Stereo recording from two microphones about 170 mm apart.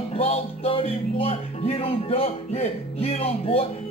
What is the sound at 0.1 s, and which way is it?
Music, 35° left (ahead or behind).